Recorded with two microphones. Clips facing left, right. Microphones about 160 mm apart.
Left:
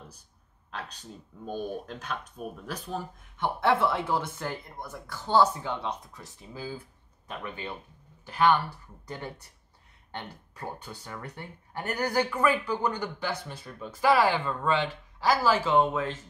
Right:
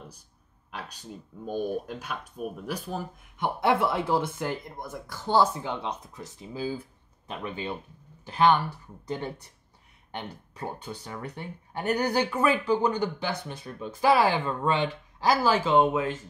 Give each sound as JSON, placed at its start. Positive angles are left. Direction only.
{"t": 0.7, "sound": "speech", "side_deg": -10}